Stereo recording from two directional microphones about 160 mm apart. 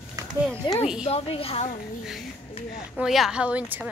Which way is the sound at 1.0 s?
40° left (ahead or behind).